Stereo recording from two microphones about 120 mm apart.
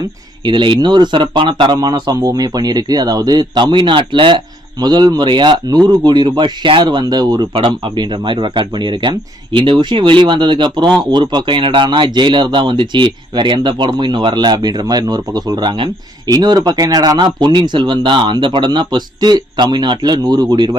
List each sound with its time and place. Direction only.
0.5 s speech: 40° right (ahead or behind)
16.3 s speech: 35° right (ahead or behind)